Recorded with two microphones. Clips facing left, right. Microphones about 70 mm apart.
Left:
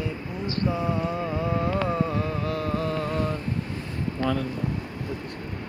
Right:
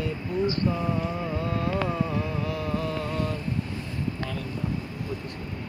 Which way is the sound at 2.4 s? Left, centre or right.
Left.